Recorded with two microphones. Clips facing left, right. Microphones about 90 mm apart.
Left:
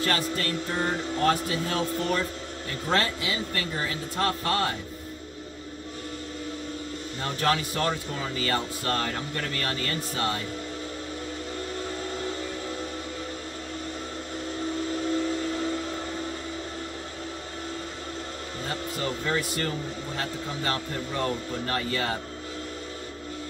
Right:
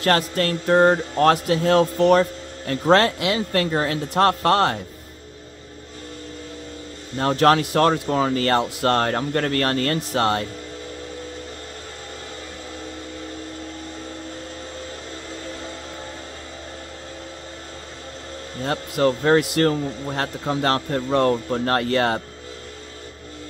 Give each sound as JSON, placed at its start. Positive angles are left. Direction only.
{"t": 0.0, "sound": "speech", "side_deg": -65}
{"t": 7.2, "sound": "a man's voice", "side_deg": -70}
{"t": 18.6, "sound": "a man's voice", "side_deg": -75}